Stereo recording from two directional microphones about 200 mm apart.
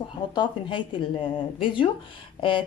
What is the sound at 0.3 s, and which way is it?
Speech, 20° left (ahead or behind).